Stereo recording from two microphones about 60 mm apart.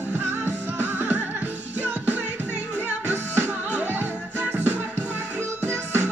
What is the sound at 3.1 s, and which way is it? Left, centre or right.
Music, right.